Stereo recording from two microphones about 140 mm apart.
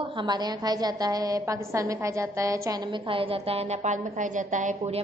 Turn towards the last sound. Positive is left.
turn(degrees=-60)  # may be behind; listen again after turning